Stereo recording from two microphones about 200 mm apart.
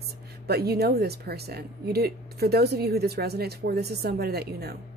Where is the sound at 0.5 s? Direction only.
55° right (ahead or behind).